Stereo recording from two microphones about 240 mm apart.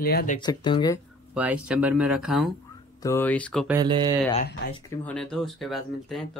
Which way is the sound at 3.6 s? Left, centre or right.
Centre.